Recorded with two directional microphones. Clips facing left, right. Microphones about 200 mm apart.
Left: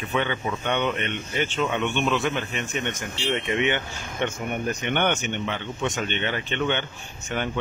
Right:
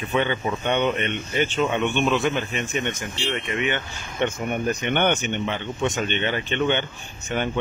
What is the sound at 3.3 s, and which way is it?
Speech, 25° left (ahead or behind).